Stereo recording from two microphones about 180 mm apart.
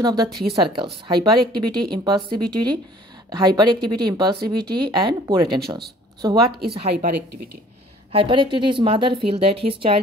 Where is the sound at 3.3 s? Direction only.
25° right (ahead or behind).